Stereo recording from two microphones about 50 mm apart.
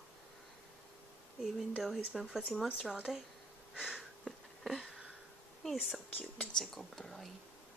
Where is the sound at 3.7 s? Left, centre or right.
Centre.